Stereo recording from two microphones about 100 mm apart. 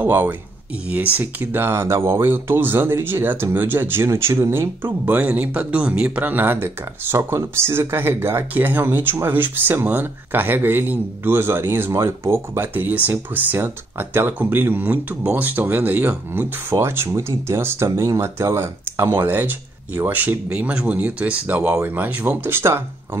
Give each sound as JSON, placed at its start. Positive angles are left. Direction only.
{"t": 0.0, "sound": "speech", "side_deg": -20}